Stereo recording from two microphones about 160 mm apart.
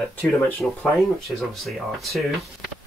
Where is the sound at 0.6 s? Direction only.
Centre (ahead or behind).